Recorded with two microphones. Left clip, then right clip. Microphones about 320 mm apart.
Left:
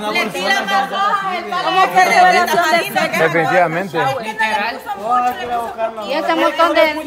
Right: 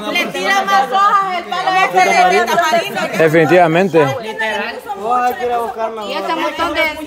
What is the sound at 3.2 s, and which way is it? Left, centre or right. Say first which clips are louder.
Speech: right 6 dB; right.